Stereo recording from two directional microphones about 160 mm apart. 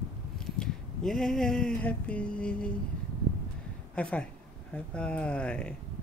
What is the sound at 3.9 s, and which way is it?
Speech, 10° left (ahead or behind).